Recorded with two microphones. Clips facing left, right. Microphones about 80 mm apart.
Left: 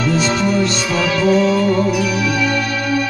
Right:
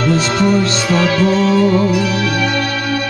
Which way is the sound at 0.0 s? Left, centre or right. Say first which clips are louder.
Right 2 dB; right.